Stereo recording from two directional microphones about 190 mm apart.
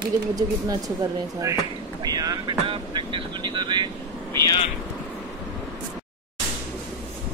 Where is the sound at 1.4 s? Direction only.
20° right (ahead or behind).